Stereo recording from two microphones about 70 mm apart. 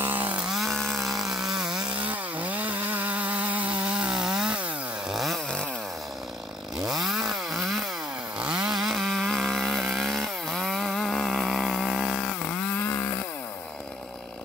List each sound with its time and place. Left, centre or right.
0.4 s chainsaw: centre
2.0 s chainsaw: right
5.1 s chainsaw: centre
6.9 s chainsaw: centre
8.4 s chainsaw: centre
12.3 s chainsaw: centre